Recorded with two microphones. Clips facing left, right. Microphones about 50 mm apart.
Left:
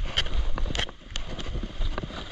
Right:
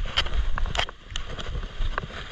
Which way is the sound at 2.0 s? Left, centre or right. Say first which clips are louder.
Right 4 dB; right.